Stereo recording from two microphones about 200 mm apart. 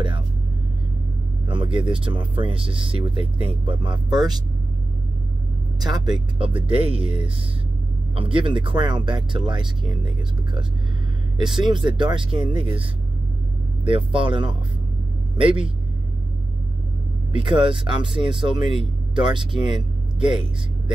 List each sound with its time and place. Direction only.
1.5 s speech: 25° right (ahead or behind)
5.8 s speech: 20° right (ahead or behind)
8.2 s speech: 25° right (ahead or behind)
11.3 s speech: 25° right (ahead or behind)
13.8 s speech: 25° right (ahead or behind)
17.3 s speech: 25° right (ahead or behind)